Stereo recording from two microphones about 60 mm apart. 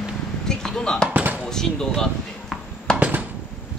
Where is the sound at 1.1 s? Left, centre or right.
Right.